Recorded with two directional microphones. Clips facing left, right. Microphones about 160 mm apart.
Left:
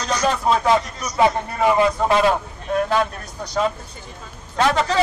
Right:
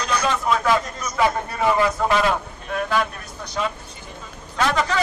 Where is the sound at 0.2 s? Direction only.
35° left (ahead or behind).